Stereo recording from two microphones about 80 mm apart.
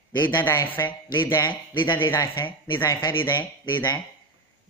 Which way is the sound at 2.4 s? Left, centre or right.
Left.